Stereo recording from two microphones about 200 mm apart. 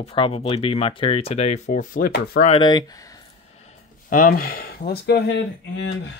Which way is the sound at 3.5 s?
35° left (ahead or behind).